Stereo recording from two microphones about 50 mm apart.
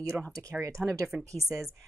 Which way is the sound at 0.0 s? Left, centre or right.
Right.